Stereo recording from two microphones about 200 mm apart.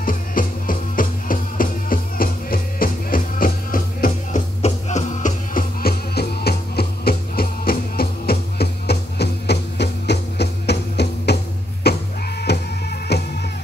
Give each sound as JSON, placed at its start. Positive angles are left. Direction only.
{"t": 0.0, "sound": "music", "side_deg": 45}
{"t": 4.6, "sound": "music", "side_deg": 35}